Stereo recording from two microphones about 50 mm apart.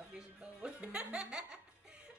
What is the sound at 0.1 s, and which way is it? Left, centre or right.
Music, centre.